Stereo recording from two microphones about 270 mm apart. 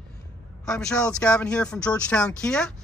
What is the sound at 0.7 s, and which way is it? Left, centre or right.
Speech, centre.